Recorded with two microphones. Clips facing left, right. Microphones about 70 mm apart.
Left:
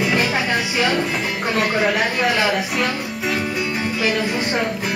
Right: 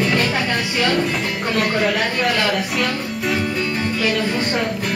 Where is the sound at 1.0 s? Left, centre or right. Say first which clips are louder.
Right 1 dB; centre.